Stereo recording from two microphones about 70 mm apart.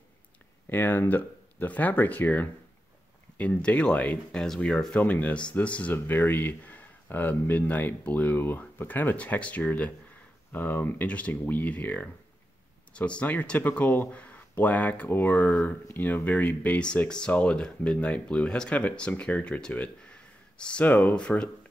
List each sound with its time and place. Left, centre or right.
0.7 s speech: left
5.9 s speech: left; by 20.8 s centre
20.8 s speech: left